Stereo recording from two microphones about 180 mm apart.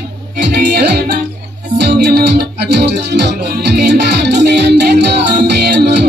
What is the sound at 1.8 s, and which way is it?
Music, 65° right (ahead or behind).